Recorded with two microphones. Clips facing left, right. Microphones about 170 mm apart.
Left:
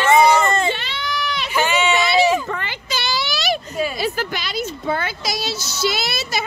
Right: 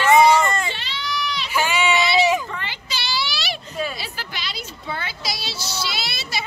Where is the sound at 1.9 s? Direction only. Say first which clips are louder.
Left 1 dB; 50° left (ahead or behind).